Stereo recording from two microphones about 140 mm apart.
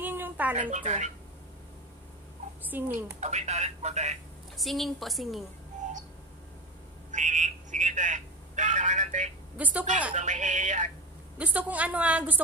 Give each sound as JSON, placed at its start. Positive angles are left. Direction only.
{"t": 0.0, "sound": "a sound", "side_deg": -15}
{"t": 0.6, "sound": "speech", "side_deg": -60}
{"t": 2.7, "sound": "a woman's voice", "side_deg": -15}
{"t": 3.2, "sound": "speech", "side_deg": -55}
{"t": 4.6, "sound": "a woman's voice", "side_deg": 0}
{"t": 7.1, "sound": "telephone", "side_deg": -60}
{"t": 9.6, "sound": "a woman's voice", "side_deg": -10}
{"t": 10.1, "sound": "speech", "side_deg": -60}
{"t": 11.3, "sound": "a woman's voice", "side_deg": -10}